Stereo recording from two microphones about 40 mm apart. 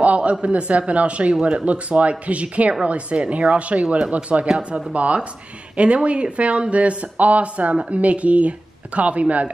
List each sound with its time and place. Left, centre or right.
0.0 s speech: right
4.5 s speech: right
4.9 s speech: right